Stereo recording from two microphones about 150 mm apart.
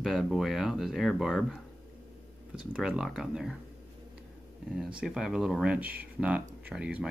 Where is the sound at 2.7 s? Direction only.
5° right (ahead or behind).